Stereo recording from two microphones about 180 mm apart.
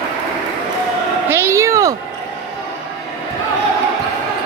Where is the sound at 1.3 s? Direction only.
15° right (ahead or behind).